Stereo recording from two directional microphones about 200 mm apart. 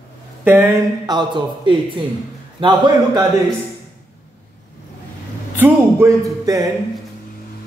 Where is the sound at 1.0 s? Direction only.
20° right (ahead or behind).